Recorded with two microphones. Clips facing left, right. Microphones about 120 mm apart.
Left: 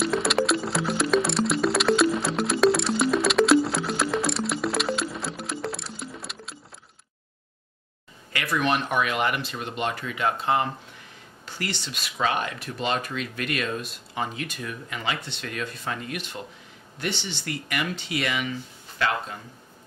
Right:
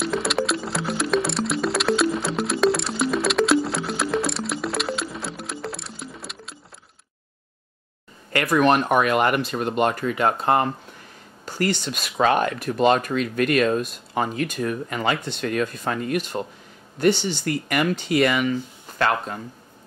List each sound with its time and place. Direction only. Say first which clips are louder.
0.0 s music: even; centre (ahead or behind)
8.3 s speech: right 7 dB; 50° right (ahead or behind)